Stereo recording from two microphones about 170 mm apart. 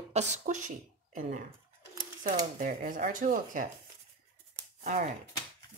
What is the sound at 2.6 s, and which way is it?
Speech, 50° right (ahead or behind).